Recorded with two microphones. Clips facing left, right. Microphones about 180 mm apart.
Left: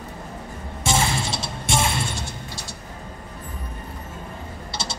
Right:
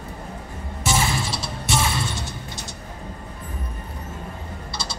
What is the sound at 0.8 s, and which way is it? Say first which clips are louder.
Music: even; 25° left (ahead or behind).